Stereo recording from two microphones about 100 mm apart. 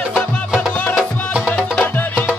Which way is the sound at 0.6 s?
15° left (ahead or behind).